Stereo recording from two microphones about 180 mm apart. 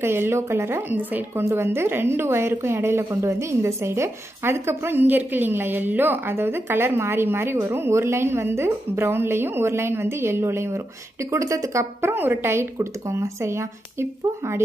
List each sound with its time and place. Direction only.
0.0 s a woman's voice: 15° right (ahead or behind)